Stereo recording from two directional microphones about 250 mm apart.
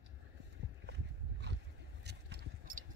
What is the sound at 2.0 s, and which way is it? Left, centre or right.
Clip-clop, right.